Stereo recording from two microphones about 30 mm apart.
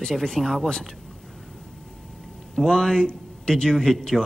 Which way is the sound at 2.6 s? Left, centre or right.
Left.